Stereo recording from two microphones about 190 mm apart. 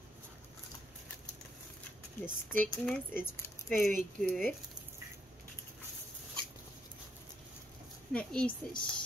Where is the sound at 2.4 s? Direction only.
10° left (ahead or behind).